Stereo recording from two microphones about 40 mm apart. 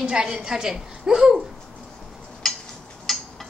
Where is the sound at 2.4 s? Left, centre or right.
Centre.